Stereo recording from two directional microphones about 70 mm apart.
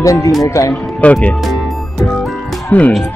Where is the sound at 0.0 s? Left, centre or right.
Left.